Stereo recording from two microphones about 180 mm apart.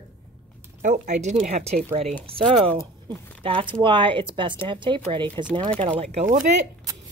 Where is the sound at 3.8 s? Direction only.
30° right (ahead or behind).